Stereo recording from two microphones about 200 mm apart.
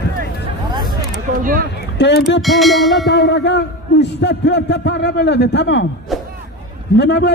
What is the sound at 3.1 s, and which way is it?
A man's voice, 55° left (ahead or behind).